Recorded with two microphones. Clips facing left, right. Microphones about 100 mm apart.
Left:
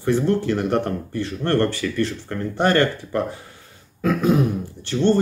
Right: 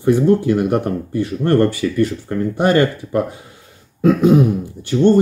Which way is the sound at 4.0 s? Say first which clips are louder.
Right 7 dB; 20° right (ahead or behind).